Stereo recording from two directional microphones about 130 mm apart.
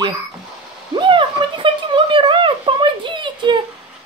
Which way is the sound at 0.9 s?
40° right (ahead or behind).